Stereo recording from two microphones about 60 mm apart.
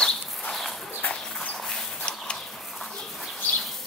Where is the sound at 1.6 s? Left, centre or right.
Centre.